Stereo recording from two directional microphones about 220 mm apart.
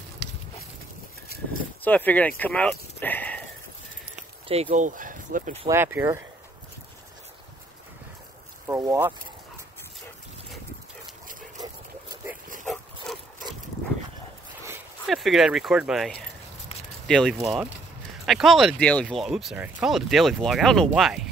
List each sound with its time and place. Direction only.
1.8 s speech: 5° left (ahead or behind)
4.6 s speech: 35° right (ahead or behind)
5.7 s speech: 10° right (ahead or behind)
8.6 s speech: 15° right (ahead or behind)
11.6 s a sound: 15° right (ahead or behind)
12.6 s dog: centre (ahead or behind)
15.0 s speech: centre (ahead or behind)